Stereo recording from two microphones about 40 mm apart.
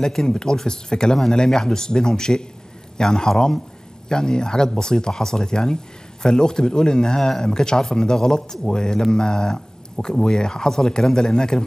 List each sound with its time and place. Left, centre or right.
0.0 s speech: centre